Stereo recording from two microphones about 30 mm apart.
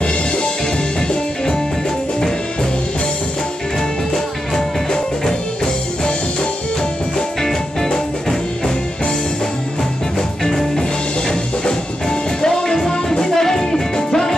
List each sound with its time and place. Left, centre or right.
7.9 s music: centre
10.4 s music: centre
11.2 s music: left